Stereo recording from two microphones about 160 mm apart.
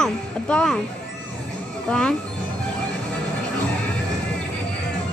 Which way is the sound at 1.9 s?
5° left (ahead or behind).